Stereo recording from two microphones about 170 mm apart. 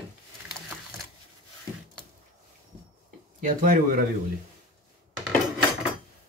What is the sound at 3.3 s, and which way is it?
Speech, 55° right (ahead or behind).